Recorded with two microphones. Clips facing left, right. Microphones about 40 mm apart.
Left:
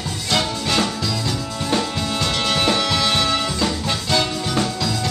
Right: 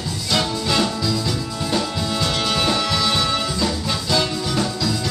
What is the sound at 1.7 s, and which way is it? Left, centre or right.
Music, left.